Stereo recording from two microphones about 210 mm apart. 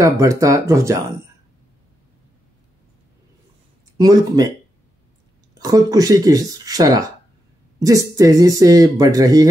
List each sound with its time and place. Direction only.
0.0 s speech: 15° right (ahead or behind)
4.0 s speech: 20° right (ahead or behind)
5.5 s speech: 15° right (ahead or behind)
8.2 s speech: 15° right (ahead or behind)